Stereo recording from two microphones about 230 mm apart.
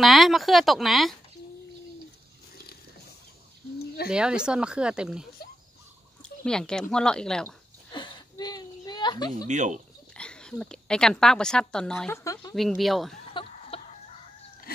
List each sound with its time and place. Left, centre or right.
0.0 s speech: centre
4.1 s speech: centre
6.4 s speech: centre
7.9 s a sound: centre
9.5 s speech: right
10.1 s speech: centre
12.5 s speech: centre
13.3 s chicken: left